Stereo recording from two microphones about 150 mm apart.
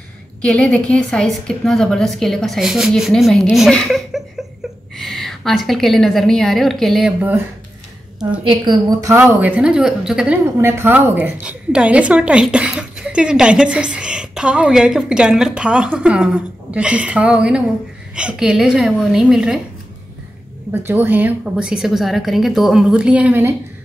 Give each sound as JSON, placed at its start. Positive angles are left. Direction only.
{"t": 0.4, "sound": "a woman's voice", "side_deg": 5}
{"t": 8.5, "sound": "a woman's voice", "side_deg": -30}
{"t": 9.2, "sound": "a woman's voice", "side_deg": -5}
{"t": 20.8, "sound": "a woman's voice", "side_deg": -15}